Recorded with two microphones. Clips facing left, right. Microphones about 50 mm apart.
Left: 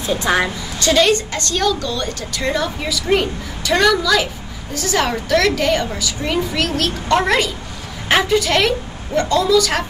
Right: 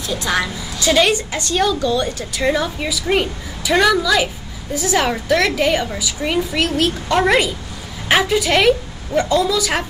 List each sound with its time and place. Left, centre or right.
0.0 s a woman's voice: left
0.7 s a woman's voice: centre